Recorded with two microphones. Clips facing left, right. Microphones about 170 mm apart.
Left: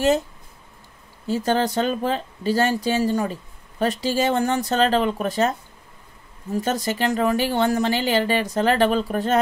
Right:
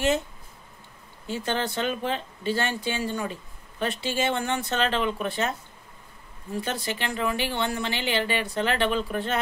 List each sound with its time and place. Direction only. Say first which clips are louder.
1.2 s speech: left 7 dB; 40° left (ahead or behind)
6.5 s speech: left 6 dB; 45° left (ahead or behind)